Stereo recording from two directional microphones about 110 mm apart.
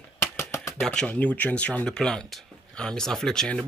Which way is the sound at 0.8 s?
5° left (ahead or behind).